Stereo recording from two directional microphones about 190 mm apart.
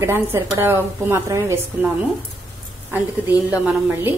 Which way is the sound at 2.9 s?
10° right (ahead or behind).